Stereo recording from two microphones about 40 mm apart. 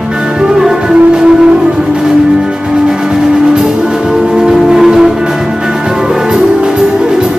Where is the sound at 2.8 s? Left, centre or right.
Centre.